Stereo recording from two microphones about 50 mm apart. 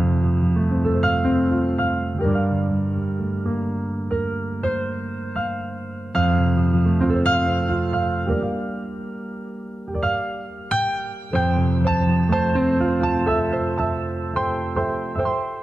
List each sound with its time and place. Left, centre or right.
0.0 s music: centre
0.9 s music: centre
1.8 s music: centre
9.9 s music: centre
11.6 s music: centre
12.3 s music: centre